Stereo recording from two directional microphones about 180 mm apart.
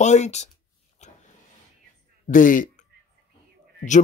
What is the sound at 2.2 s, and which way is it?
Speech, 45° left (ahead or behind).